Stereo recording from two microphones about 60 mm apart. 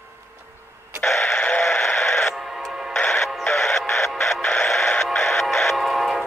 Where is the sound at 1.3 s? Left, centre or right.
Left.